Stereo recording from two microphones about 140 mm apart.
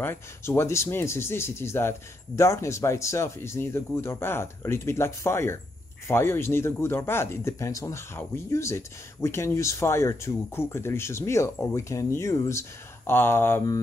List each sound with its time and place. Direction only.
0.0 s speech: 15° left (ahead or behind)